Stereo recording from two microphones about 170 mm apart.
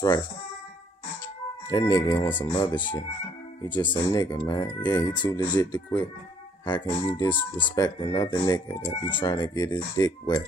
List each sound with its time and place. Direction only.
1.7 s speech: 20° left (ahead or behind)